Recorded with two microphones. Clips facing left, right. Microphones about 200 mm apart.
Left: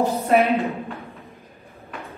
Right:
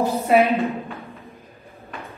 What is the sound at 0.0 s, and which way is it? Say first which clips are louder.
Speech: even; 15° left (ahead or behind).